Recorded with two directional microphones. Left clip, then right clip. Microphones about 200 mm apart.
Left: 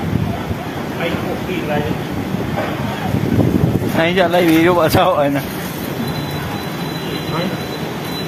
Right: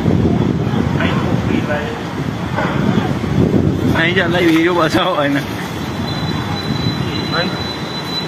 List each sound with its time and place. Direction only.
4.0 s speech: 25° left (ahead or behind)